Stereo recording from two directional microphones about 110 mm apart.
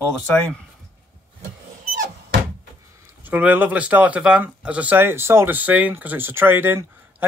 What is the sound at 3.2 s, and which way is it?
Speech, 15° right (ahead or behind).